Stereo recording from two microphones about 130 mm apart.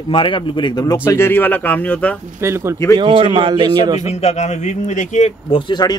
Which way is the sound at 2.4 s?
20° right (ahead or behind).